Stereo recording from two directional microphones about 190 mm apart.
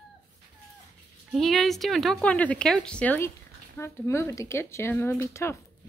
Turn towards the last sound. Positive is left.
turn(degrees=15)  # may be behind; listen again after turning